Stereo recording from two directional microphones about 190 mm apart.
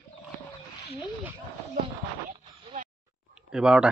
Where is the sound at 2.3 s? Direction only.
35° right (ahead or behind).